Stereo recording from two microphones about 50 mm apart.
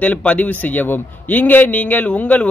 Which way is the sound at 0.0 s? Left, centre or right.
Left.